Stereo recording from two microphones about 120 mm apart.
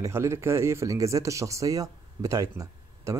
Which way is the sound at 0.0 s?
20° right (ahead or behind).